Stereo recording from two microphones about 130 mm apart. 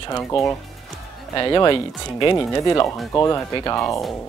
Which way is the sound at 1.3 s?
35° left (ahead or behind).